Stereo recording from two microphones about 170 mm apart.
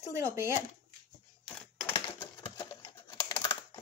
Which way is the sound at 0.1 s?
15° right (ahead or behind).